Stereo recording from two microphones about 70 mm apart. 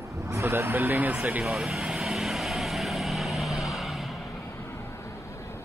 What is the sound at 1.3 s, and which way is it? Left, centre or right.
Vehicle, centre.